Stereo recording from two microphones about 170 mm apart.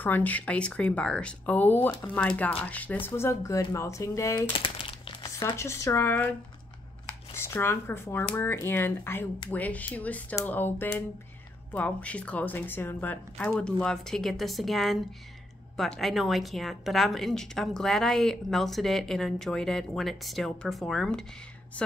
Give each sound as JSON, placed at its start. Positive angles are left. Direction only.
{"t": 0.0, "sound": "a woman's voice", "side_deg": 10}
{"t": 4.6, "sound": "crumpling", "side_deg": 30}
{"t": 5.4, "sound": "a woman's voice", "side_deg": 15}
{"t": 7.3, "sound": "a woman's voice", "side_deg": 15}